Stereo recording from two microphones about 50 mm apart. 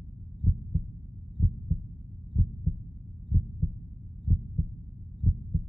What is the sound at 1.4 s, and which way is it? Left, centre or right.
Heart sounds, centre.